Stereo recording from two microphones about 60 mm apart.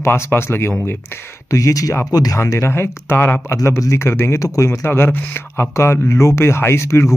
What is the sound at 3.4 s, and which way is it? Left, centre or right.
Speech, left.